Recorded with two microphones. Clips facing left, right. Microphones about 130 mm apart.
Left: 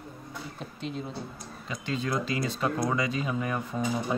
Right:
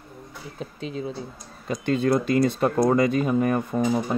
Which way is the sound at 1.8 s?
55° right (ahead or behind).